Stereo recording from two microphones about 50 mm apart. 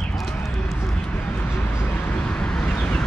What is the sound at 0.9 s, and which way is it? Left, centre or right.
Vehicle, left.